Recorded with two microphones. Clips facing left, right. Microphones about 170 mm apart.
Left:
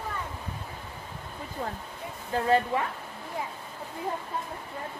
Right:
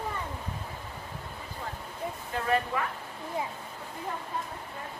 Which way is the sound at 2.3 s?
30° left (ahead or behind).